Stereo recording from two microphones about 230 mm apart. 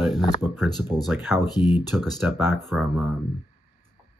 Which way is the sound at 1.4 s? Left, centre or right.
Centre.